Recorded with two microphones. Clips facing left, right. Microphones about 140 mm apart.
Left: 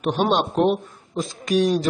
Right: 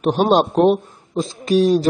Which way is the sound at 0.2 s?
35° right (ahead or behind).